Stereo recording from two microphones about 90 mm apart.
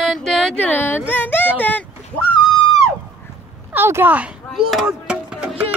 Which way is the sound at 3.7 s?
25° right (ahead or behind).